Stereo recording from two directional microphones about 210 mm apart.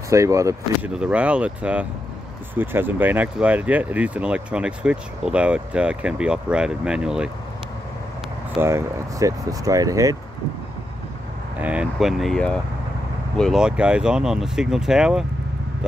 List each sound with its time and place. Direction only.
0.1 s speech: 15° right (ahead or behind)
8.5 s speech: 15° right (ahead or behind)
11.6 s speech: 5° right (ahead or behind)